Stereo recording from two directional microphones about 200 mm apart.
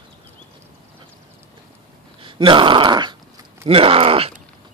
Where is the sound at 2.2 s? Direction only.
25° right (ahead or behind).